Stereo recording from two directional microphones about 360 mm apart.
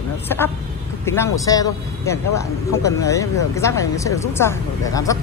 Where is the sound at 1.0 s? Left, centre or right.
Centre.